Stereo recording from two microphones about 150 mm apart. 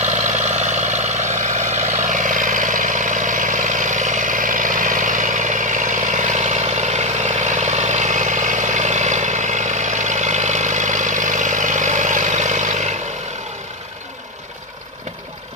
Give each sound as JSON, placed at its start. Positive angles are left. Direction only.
{"t": 0.0, "sound": "vehicle", "side_deg": -50}